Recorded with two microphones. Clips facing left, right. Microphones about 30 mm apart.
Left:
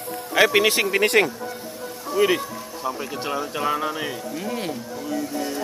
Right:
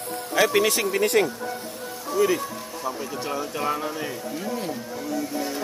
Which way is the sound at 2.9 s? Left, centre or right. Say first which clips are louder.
Left 2 dB; centre.